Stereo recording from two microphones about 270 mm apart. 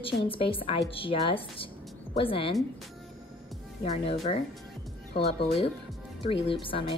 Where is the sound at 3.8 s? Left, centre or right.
Left.